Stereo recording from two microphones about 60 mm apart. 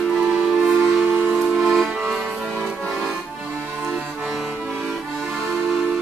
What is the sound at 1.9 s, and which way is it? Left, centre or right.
Accordion, centre.